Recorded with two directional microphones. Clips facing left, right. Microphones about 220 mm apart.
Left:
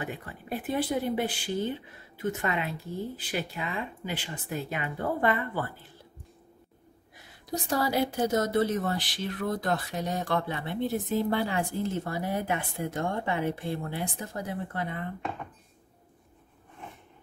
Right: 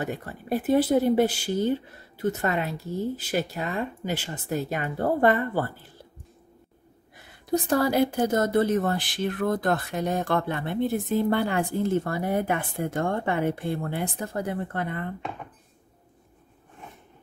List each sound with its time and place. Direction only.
0.0 s speech: 40° right (ahead or behind)
7.4 s speech: 55° right (ahead or behind)